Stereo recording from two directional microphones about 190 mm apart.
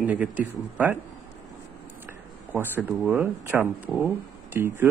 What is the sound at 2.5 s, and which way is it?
Speech, 10° right (ahead or behind).